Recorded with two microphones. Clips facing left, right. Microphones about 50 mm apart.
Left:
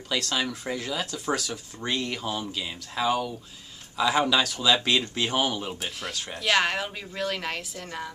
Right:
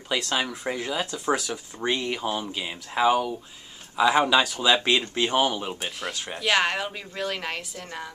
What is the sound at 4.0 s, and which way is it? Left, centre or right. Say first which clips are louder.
Speech: right 3 dB; centre.